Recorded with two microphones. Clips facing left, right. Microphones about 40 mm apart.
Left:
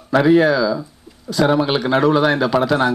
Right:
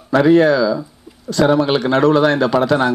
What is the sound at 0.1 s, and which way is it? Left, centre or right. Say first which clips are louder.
Speech: right 2 dB; centre.